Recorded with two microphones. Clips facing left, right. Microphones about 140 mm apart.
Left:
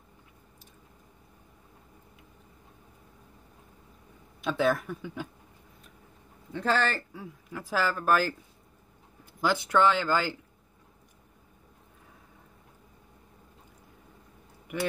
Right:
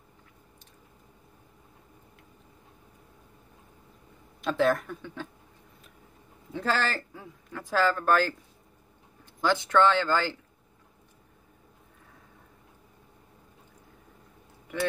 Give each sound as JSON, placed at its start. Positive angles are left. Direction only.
{"t": 4.4, "sound": "speech", "side_deg": 0}
{"t": 6.5, "sound": "speech", "side_deg": 0}